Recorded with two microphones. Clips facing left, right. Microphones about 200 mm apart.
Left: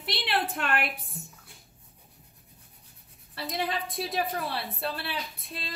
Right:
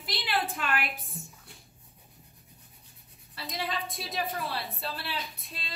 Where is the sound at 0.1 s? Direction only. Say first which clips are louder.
Left 2 dB; 60° left (ahead or behind).